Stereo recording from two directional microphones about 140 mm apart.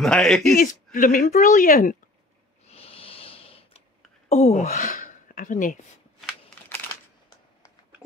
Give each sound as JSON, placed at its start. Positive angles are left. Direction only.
{"t": 0.0, "sound": "speech", "side_deg": 5}
{"t": 0.6, "sound": "speech", "side_deg": 75}
{"t": 2.7, "sound": "a sound", "side_deg": 45}
{"t": 4.3, "sound": "speech", "side_deg": 50}